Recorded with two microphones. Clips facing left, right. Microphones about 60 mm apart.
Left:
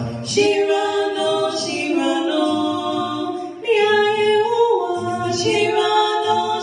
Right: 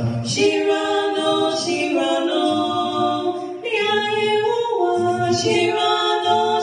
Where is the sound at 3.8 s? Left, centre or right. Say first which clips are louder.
Left 3 dB; left.